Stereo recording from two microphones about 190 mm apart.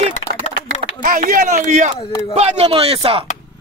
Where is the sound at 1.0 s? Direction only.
45° right (ahead or behind).